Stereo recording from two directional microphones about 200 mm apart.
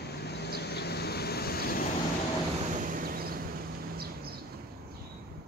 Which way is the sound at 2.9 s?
45° right (ahead or behind).